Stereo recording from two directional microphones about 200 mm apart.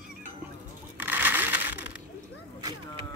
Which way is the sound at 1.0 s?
10° right (ahead or behind).